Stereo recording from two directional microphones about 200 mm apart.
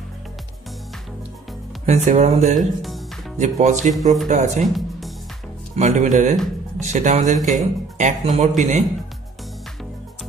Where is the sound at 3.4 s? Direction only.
35° right (ahead or behind).